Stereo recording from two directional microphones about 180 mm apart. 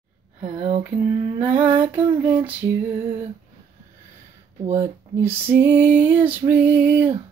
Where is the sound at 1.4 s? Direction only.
10° right (ahead or behind).